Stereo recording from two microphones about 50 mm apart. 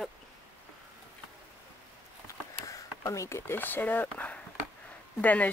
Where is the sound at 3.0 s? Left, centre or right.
Left.